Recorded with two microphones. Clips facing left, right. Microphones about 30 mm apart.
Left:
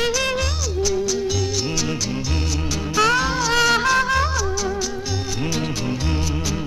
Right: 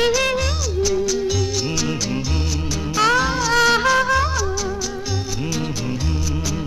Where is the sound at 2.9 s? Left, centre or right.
Centre.